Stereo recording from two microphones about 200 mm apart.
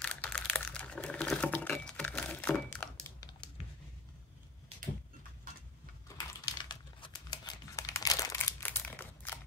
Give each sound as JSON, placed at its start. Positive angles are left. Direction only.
{"t": 0.0, "sound": "typing", "side_deg": 5}
{"t": 6.0, "sound": "crumpling", "side_deg": 20}